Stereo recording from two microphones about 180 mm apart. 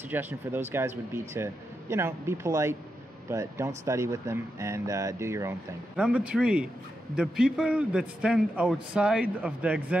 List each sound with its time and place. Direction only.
0.1 s a man's voice: 10° right (ahead or behind)